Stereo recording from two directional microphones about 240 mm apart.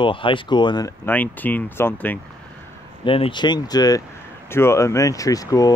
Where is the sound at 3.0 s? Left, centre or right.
Left.